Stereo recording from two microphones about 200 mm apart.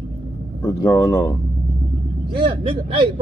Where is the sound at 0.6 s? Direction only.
15° left (ahead or behind).